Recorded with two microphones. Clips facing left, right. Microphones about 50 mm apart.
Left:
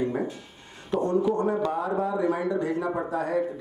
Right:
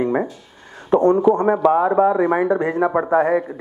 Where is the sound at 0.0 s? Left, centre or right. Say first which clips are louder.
Right 7 dB; right.